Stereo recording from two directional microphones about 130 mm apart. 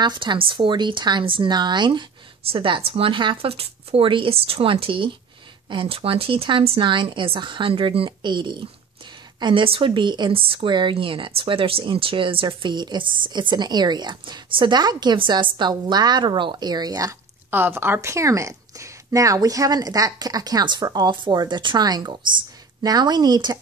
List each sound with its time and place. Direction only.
0.0 s speech: 35° right (ahead or behind)
17.5 s a woman's voice: 15° right (ahead or behind); by 23.6 s 35° right (ahead or behind)